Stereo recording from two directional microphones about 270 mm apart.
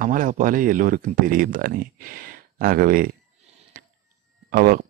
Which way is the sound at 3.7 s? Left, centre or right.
Right.